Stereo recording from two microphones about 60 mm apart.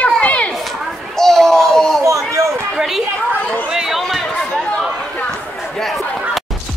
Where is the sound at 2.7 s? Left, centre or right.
Centre.